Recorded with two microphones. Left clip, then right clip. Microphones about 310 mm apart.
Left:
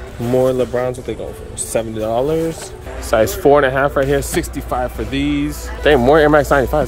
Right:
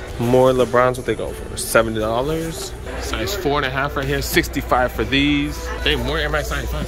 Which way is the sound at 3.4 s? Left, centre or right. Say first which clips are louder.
Left 7 dB; centre.